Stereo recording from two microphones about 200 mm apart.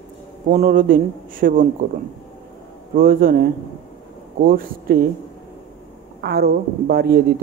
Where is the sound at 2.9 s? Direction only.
45° right (ahead or behind).